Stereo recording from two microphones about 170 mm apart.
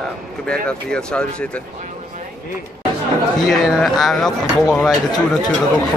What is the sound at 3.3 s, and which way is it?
Speech, centre (ahead or behind).